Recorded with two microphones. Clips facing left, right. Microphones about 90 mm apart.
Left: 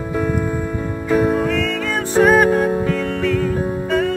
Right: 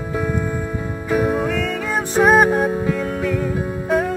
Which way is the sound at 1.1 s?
Centre (ahead or behind).